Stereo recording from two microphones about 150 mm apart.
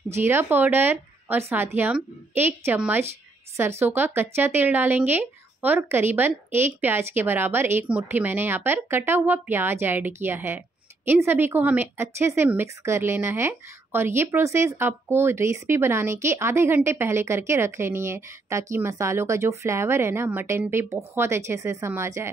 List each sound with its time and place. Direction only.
0.1 s a woman's voice: 15° right (ahead or behind)